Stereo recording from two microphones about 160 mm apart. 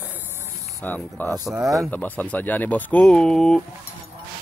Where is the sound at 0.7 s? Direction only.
15° left (ahead or behind).